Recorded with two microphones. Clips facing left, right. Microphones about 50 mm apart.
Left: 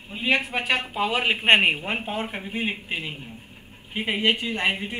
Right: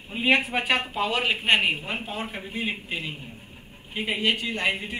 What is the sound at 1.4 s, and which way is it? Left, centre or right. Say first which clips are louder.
Speech: left 5 dB; left.